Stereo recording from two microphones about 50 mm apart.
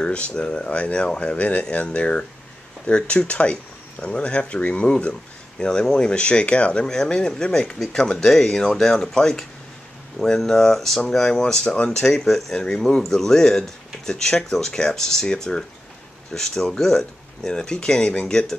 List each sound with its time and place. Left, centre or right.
0.0 s speech: left
12.3 s speech: centre